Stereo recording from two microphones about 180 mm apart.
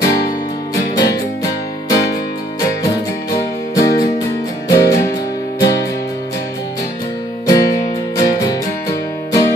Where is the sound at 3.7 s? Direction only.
20° left (ahead or behind).